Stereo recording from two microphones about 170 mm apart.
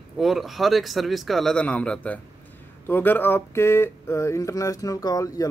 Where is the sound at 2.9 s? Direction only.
10° left (ahead or behind).